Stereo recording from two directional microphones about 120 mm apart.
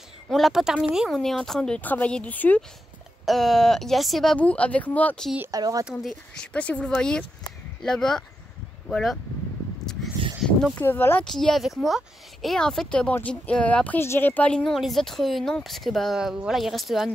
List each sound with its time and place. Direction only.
0.3 s speech: centre (ahead or behind)
3.3 s speech: centre (ahead or behind)
5.5 s speech: 30° right (ahead or behind)
6.3 s speech: 10° left (ahead or behind)
10.8 s speech: 20° left (ahead or behind)
11.2 s speech: 5° left (ahead or behind)